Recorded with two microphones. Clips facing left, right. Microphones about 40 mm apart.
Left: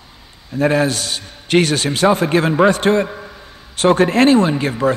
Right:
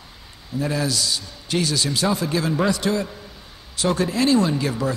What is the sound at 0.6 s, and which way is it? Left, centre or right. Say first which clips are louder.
A man's voice: left 8 dB; left.